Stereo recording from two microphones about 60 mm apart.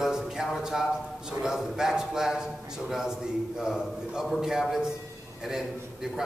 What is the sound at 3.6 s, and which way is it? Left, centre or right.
A man's voice, centre.